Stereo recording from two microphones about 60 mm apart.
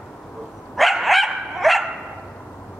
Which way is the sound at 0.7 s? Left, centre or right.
Centre.